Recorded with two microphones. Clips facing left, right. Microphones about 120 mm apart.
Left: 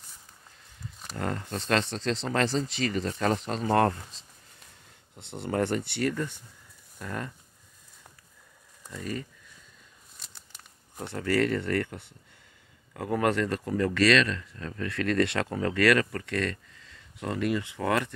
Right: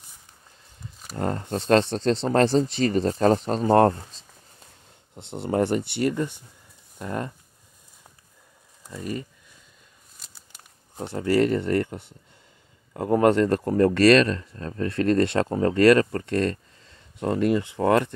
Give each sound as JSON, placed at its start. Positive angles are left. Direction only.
{"t": 1.1, "sound": "speech", "side_deg": -30}
{"t": 2.0, "sound": "speech", "side_deg": -50}
{"t": 2.2, "sound": "speech", "side_deg": -35}
{"t": 5.1, "sound": "speech", "side_deg": -20}
{"t": 8.8, "sound": "speech", "side_deg": -15}
{"t": 10.1, "sound": "a sound", "side_deg": -5}
{"t": 11.1, "sound": "speech", "side_deg": -20}
{"t": 13.5, "sound": "speech", "side_deg": -45}